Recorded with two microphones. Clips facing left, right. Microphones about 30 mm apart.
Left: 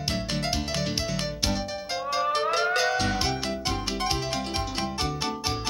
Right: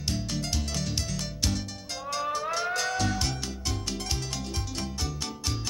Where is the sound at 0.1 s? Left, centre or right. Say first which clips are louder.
Left 3 dB; left.